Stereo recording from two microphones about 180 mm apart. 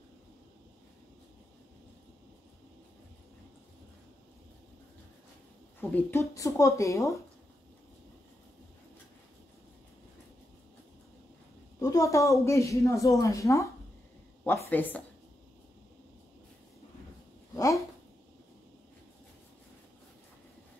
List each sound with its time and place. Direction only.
5.8 s speech: 10° left (ahead or behind)
11.8 s speech: 20° left (ahead or behind)
17.6 s a sound: 15° left (ahead or behind)